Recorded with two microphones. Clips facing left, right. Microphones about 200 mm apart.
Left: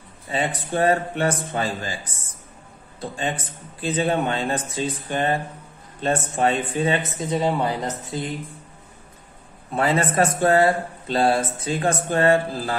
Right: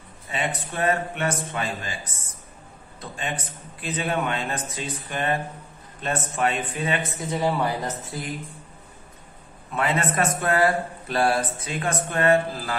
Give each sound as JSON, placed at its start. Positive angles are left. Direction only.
{"t": 0.3, "sound": "a man's voice", "side_deg": 30}
{"t": 3.0, "sound": "a man's voice", "side_deg": 30}
{"t": 9.7, "sound": "a man's voice", "side_deg": 35}